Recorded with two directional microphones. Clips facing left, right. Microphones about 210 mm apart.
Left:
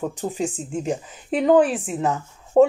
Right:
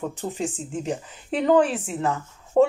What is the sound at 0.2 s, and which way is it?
Speech, 15° left (ahead or behind).